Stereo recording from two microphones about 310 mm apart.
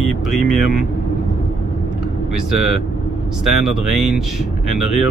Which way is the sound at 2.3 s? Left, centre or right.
Right.